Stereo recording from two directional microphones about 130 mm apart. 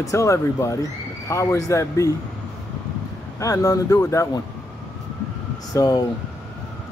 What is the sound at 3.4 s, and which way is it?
Speech, 25° left (ahead or behind).